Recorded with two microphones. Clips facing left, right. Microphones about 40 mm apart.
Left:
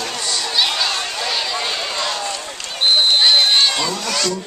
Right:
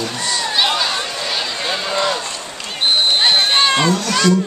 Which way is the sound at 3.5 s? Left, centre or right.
Right.